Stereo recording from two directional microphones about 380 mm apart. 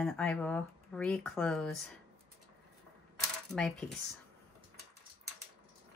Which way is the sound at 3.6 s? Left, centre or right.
Centre.